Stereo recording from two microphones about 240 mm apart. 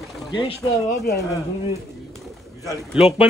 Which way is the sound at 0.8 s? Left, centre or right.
Left.